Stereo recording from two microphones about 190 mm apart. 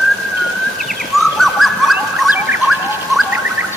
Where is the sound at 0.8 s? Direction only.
Centre (ahead or behind).